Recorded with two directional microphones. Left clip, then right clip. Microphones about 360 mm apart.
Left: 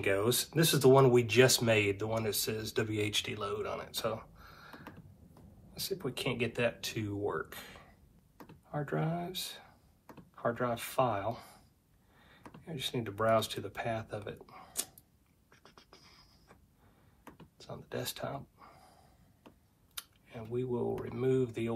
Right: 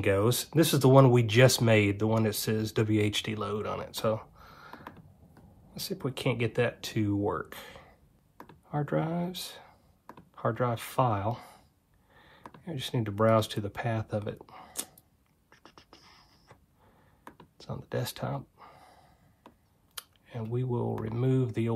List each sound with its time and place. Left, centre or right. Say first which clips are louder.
0.0 s speech: right 4 dB; right
15.5 s beatboxing: right 4 dB; right
17.6 s a sound: right 5 dB; right
20.0 s speech: right 4 dB; right